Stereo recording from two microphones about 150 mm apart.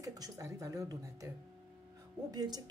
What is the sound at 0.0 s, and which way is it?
Speech, 25° right (ahead or behind).